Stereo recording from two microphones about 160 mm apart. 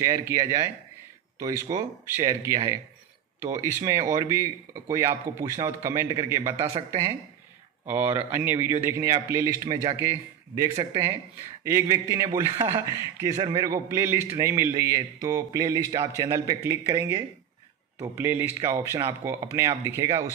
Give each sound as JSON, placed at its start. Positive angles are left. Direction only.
{"t": 0.0, "sound": "a man's voice", "side_deg": -20}
{"t": 1.7, "sound": "a man's voice", "side_deg": -30}
{"t": 3.8, "sound": "a man's voice", "side_deg": -20}